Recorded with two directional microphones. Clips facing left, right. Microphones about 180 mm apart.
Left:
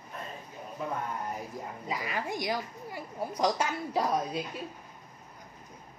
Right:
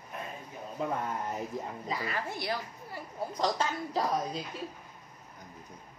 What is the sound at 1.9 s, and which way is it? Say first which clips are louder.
Speech: left 3 dB; 15° left (ahead or behind).